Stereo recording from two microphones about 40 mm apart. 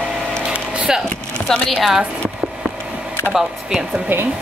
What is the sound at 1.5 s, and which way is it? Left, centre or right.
Speech, centre.